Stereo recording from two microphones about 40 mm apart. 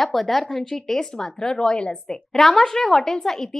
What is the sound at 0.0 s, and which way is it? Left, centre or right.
A woman's voice, centre.